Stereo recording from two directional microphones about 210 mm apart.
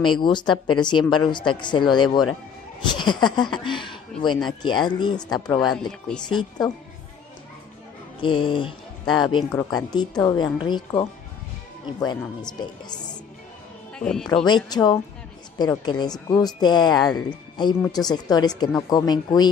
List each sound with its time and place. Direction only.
0.0 s speech: 20° left (ahead or behind)
5.6 s speech: centre (ahead or behind)
6.2 s speech: 20° left (ahead or behind)
8.2 s speech: 25° left (ahead or behind)
13.9 s speech: 5° left (ahead or behind)
14.4 s speech: 20° left (ahead or behind)